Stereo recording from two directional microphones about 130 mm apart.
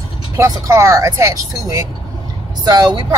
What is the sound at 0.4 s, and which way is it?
Speech, 20° right (ahead or behind).